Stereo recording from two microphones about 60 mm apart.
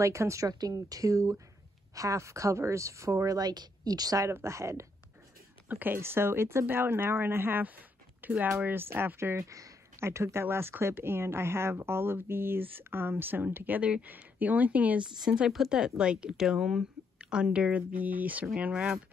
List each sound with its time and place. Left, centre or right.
0.0 s speech: right
3.3 s a woman's voice: right
4.3 s speech: right
5.7 s speech: right
5.9 s speech: right
9.4 s speech: right
13.7 s speech: right
15.0 s a woman's voice: centre
18.7 s a woman's voice: centre